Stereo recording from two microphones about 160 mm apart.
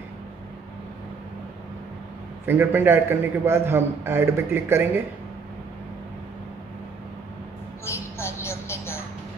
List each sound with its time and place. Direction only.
2.4 s a man's voice: 15° right (ahead or behind)
7.8 s mouse: 15° left (ahead or behind)